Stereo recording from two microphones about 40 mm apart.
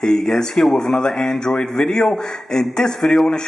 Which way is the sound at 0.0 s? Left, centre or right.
Centre.